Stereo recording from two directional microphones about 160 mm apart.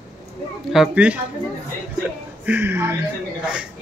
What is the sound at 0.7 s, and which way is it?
Speech, 5° right (ahead or behind).